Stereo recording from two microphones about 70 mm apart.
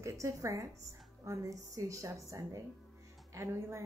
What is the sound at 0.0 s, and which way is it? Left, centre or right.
Speech, right.